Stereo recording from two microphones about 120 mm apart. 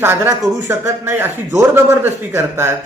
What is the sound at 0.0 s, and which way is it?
Speech, 20° right (ahead or behind).